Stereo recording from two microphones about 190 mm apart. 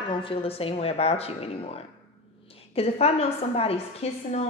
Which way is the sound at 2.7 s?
30° left (ahead or behind).